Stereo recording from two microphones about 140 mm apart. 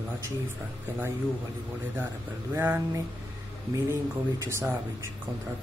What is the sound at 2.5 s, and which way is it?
Speech, 15° right (ahead or behind).